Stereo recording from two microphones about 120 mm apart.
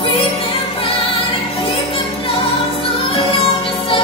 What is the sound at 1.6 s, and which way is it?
Music, 45° left (ahead or behind).